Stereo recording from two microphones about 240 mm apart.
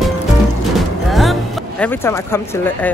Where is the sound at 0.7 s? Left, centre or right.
Centre.